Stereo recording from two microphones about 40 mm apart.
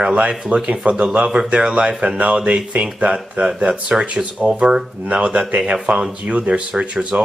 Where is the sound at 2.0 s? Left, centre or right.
Right.